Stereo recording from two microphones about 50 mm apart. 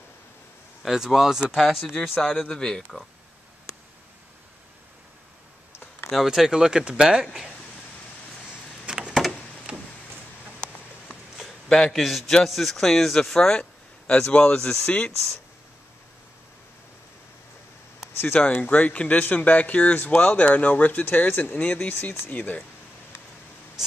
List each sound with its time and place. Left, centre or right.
0.8 s speech: centre
2.4 s speech: centre
6.0 s speech: centre
8.8 s a sound: centre
10.6 s a sound: left
11.3 s a sound: centre
12.0 s speech: centre
14.9 s speech: left
18.1 s speech: left
18.6 s speech: left